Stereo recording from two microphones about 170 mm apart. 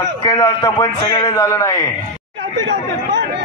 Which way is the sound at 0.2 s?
25° left (ahead or behind).